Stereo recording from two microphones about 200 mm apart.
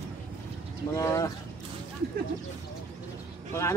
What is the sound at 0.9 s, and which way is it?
Speech, 15° left (ahead or behind).